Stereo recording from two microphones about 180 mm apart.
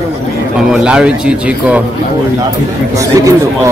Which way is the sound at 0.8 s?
5° right (ahead or behind).